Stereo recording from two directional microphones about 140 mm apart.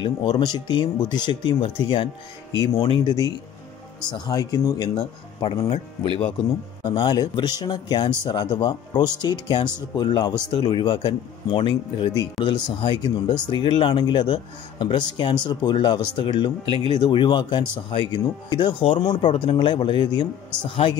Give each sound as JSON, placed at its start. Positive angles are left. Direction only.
{"t": 0.0, "sound": "speech", "side_deg": 30}
{"t": 4.9, "sound": "speech", "side_deg": 35}
{"t": 6.9, "sound": "speech", "side_deg": 30}
{"t": 16.6, "sound": "speech", "side_deg": -35}
{"t": 17.0, "sound": "speech", "side_deg": 35}